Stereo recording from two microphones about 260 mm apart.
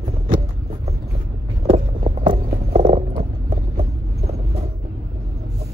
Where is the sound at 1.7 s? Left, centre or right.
Right.